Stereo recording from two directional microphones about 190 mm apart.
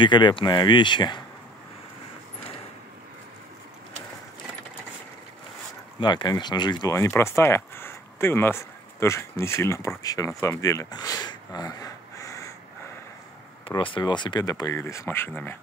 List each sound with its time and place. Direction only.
0.0 s speech: 25° left (ahead or behind)
5.9 s speech: 25° left (ahead or behind)
13.7 s speech: 25° left (ahead or behind); by 15.5 s 10° left (ahead or behind)